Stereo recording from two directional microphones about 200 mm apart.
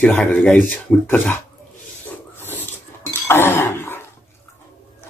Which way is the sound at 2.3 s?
10° left (ahead or behind).